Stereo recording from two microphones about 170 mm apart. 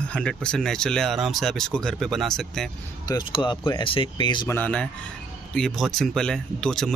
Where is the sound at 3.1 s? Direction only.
25° left (ahead or behind).